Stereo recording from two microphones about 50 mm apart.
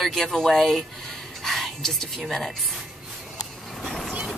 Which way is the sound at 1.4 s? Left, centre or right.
Centre.